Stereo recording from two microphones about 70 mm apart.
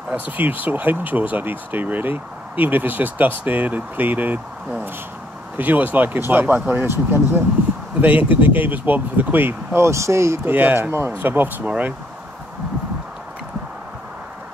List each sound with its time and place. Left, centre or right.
0.1 s speech: right
5.6 s speech: right
9.8 s speech: right
10.5 s speech: right